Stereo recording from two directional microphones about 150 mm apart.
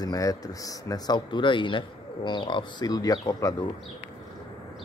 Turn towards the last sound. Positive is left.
turn(degrees=25)  # may be behind; listen again after turning